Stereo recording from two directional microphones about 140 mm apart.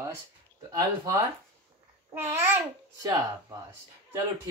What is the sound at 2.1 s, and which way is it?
Speech, 15° right (ahead or behind).